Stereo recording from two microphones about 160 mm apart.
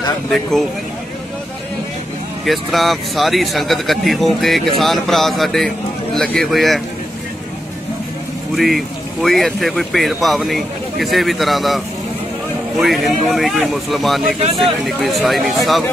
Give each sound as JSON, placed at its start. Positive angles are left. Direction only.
{"t": 0.3, "sound": "speech", "side_deg": 0}
{"t": 2.4, "sound": "speech", "side_deg": 0}
{"t": 8.5, "sound": "speech", "side_deg": 0}